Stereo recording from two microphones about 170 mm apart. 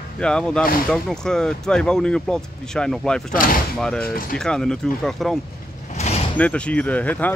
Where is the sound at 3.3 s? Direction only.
55° left (ahead or behind).